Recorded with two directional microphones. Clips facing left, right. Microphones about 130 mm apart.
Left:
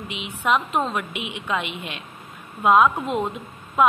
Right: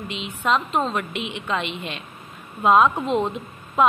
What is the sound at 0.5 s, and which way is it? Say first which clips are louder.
A woman's voice: even; 10° left (ahead or behind).